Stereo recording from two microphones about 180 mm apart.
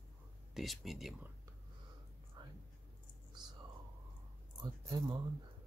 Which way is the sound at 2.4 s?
25° right (ahead or behind).